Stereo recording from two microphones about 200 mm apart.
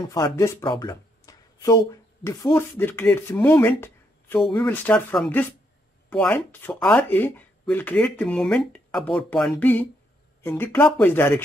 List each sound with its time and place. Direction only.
0.1 s speech: 15° left (ahead or behind)